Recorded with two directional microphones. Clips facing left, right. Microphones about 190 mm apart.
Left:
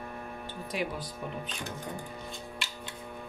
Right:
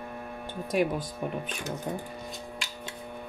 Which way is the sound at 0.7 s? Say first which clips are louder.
Right 8 dB; 50° right (ahead or behind).